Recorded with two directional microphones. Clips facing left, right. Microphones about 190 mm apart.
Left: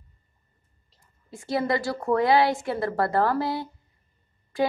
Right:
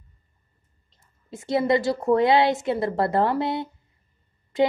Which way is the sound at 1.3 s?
20° right (ahead or behind).